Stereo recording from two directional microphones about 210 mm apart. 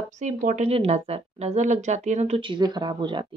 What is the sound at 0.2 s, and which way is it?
Speech, 35° right (ahead or behind).